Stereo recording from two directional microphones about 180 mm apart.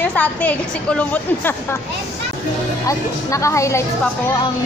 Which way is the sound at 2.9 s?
15° left (ahead or behind).